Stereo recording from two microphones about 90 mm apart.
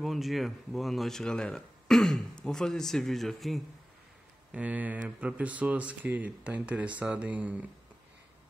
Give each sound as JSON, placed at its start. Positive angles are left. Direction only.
{"t": 0.0, "sound": "speech", "side_deg": 0}
{"t": 4.5, "sound": "speech", "side_deg": -15}